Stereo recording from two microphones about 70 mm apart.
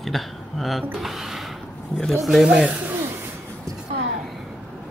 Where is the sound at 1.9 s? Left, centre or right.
Centre.